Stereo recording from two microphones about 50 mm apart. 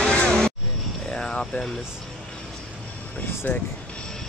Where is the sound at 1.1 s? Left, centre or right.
Centre.